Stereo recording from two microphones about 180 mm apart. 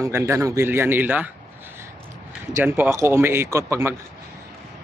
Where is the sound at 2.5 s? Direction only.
15° right (ahead or behind).